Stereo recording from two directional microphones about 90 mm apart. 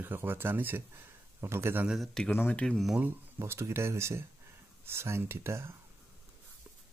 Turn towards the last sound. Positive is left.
turn(degrees=-30)  # may be behind; listen again after turning